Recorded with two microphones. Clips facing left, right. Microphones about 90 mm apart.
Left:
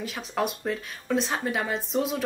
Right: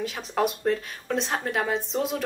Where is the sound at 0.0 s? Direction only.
Centre (ahead or behind).